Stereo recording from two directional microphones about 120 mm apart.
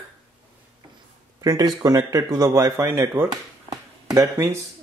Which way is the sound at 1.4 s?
30° right (ahead or behind).